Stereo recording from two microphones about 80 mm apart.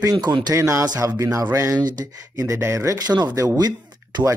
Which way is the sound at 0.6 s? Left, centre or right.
Right.